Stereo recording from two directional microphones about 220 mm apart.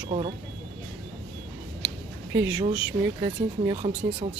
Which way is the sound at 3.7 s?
25° right (ahead or behind).